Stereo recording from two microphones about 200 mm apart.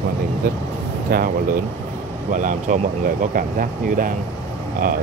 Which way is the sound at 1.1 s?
50° right (ahead or behind).